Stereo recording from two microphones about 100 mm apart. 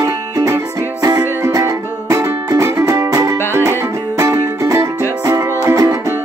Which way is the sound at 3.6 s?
30° right (ahead or behind).